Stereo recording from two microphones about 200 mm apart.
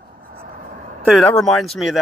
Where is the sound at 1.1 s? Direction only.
Centre (ahead or behind).